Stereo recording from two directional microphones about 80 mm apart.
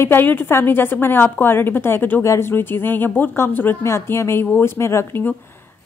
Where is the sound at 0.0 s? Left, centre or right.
Left.